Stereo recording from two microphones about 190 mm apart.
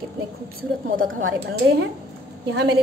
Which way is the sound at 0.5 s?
45° right (ahead or behind).